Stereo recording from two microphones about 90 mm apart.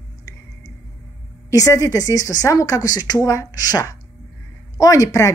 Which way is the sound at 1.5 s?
35° left (ahead or behind).